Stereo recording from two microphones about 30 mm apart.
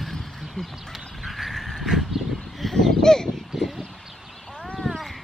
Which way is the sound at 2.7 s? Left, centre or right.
Centre.